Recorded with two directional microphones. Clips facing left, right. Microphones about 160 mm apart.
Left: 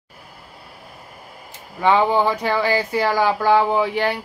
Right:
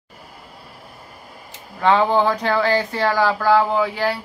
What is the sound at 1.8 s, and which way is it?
Speech, 10° left (ahead or behind).